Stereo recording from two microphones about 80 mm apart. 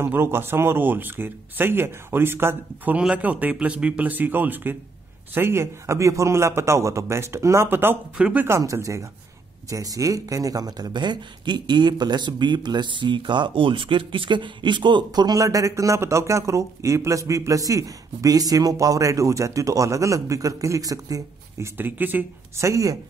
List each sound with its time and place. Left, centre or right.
0.0 s speech: right
3.0 s a man's voice: centre
8.2 s speech: centre
8.5 s a man's voice: right
15.0 s speech: right
21.7 s speech: right
22.6 s speech: right